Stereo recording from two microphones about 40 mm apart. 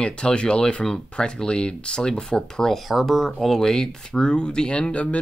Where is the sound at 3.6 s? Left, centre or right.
Centre.